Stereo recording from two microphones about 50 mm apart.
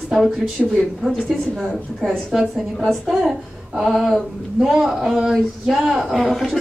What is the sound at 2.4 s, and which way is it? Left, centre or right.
A woman's voice, centre.